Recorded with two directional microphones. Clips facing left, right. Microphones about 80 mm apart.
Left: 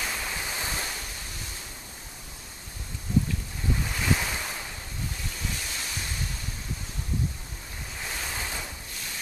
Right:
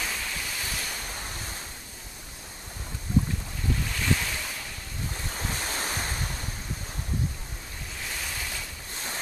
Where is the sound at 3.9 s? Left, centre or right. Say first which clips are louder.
Left 1 dB; centre.